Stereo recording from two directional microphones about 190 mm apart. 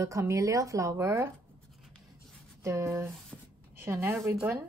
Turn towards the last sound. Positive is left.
turn(degrees=-15)  # may be behind; listen again after turning